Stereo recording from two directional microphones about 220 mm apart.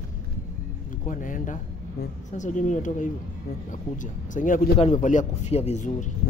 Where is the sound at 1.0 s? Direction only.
35° left (ahead or behind).